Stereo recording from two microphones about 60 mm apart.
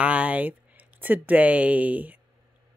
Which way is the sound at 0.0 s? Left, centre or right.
Right.